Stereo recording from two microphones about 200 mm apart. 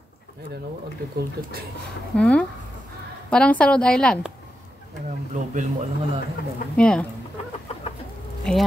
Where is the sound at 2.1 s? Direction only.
5° left (ahead or behind).